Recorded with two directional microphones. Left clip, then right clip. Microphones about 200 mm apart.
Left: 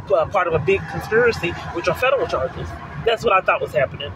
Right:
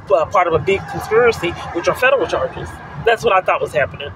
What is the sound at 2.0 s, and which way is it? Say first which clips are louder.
A man's voice: right 4 dB; 20° right (ahead or behind).